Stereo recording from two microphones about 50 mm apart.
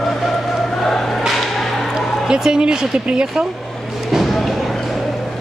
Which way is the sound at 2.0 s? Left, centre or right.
Centre.